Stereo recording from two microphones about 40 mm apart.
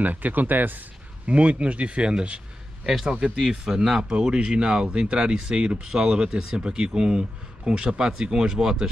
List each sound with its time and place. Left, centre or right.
0.0 s speech: right
1.2 s a man's voice: right; by 8.9 s centre